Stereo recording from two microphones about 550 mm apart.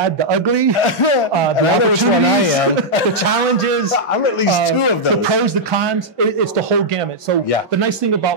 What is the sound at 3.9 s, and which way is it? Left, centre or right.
Speech, left.